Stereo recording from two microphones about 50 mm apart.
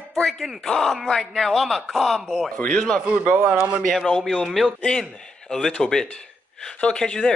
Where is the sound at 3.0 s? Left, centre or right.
Right.